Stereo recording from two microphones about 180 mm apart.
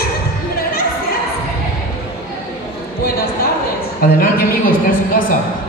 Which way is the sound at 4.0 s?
55° left (ahead or behind).